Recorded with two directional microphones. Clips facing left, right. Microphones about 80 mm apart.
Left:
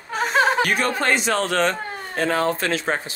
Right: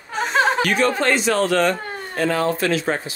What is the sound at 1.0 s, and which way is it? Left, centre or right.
Speech, left.